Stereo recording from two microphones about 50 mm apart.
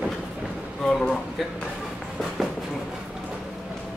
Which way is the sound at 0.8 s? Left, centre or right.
Centre.